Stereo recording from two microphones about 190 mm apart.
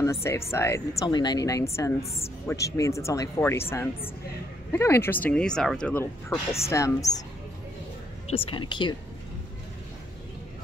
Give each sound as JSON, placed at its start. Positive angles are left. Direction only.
{"t": 0.0, "sound": "speech", "side_deg": 15}
{"t": 8.3, "sound": "speech", "side_deg": 25}